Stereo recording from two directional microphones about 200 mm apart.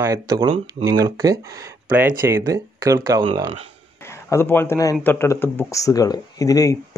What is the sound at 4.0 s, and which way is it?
A man's voice, 15° left (ahead or behind).